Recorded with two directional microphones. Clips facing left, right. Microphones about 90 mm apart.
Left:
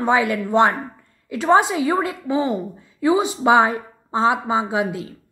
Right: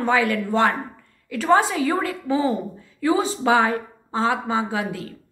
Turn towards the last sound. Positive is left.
turn(degrees=20)  # may be behind; listen again after turning